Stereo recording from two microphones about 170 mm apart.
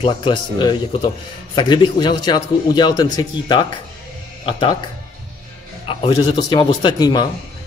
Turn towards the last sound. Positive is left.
turn(degrees=25)  # may be behind; listen again after turning